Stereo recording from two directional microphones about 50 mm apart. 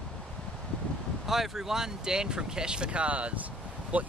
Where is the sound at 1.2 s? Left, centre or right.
Centre.